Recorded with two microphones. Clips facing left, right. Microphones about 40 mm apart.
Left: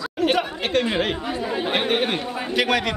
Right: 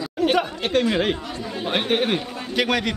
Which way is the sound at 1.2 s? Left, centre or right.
Left.